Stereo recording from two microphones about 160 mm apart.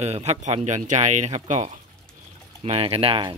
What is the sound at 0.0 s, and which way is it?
Speech, 40° right (ahead or behind).